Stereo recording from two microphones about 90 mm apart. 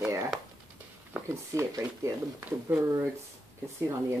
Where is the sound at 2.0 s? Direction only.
30° right (ahead or behind).